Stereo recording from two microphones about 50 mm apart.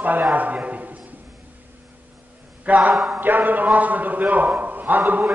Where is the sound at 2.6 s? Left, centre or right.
Right.